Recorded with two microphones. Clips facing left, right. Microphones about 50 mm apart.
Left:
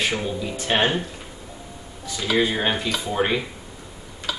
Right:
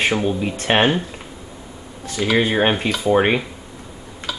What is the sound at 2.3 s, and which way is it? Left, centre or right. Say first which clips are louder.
Speech: right 4 dB; right.